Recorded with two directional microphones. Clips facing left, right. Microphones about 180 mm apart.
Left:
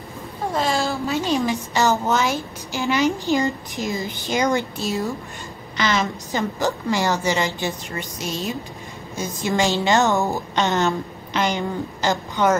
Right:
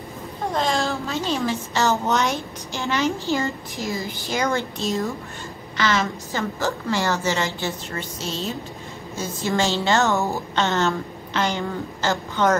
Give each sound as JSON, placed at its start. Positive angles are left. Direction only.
{"t": 0.5, "sound": "a sound", "side_deg": 5}
{"t": 1.0, "sound": "a woman's voice", "side_deg": 15}
{"t": 2.0, "sound": "a woman's voice", "side_deg": 0}
{"t": 2.8, "sound": "a woman's voice", "side_deg": 15}
{"t": 5.8, "sound": "a woman's voice", "side_deg": 15}